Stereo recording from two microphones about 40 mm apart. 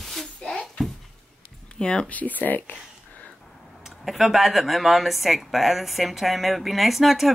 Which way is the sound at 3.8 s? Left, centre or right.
Centre.